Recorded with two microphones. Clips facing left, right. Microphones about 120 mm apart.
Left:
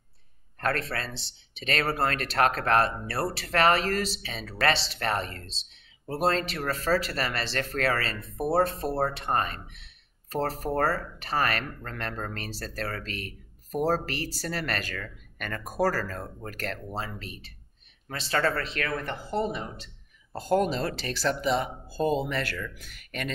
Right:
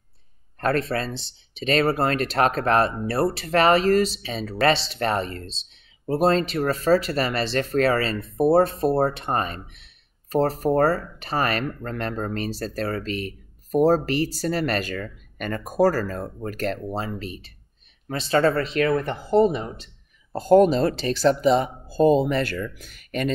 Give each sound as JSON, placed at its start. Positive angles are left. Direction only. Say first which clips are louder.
{"t": 0.6, "sound": "speech", "louder": "right 6 dB", "side_deg": -25}